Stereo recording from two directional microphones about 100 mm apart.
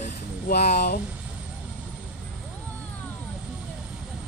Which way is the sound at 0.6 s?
90° left.